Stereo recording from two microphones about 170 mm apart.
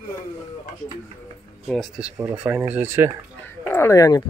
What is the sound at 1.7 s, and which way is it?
Speech, centre (ahead or behind).